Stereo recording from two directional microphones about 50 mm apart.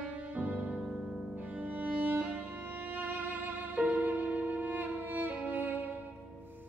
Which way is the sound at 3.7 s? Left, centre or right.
Right.